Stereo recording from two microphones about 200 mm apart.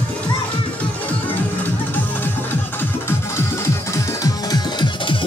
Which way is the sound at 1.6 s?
10° left (ahead or behind).